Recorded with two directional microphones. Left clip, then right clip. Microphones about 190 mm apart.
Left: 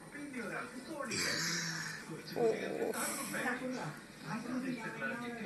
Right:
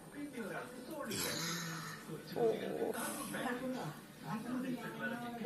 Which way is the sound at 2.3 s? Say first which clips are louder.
Left 2 dB; centre (ahead or behind).